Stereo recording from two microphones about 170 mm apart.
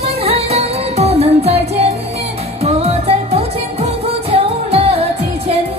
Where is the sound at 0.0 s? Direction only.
35° right (ahead or behind).